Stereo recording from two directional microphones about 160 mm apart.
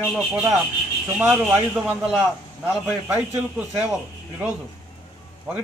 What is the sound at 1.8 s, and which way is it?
Speech, 5° right (ahead or behind).